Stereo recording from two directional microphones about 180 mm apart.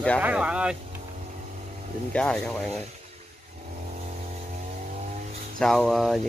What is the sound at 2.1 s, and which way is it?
Speech, 5° left (ahead or behind).